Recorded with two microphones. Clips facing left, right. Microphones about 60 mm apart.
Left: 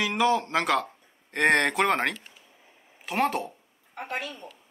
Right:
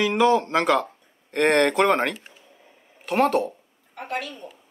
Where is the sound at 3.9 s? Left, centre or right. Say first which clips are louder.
Right 3 dB; left.